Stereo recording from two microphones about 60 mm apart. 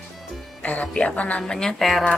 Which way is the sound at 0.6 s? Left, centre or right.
Left.